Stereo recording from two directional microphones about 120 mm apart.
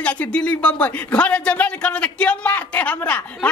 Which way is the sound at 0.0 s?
10° left (ahead or behind).